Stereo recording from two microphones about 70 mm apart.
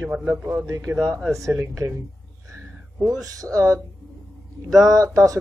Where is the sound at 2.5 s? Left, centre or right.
Right.